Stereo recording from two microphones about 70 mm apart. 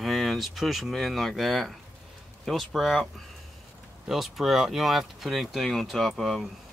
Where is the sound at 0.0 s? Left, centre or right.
Centre.